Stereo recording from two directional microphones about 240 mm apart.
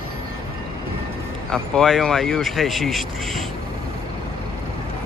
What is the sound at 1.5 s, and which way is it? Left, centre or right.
Speech, centre.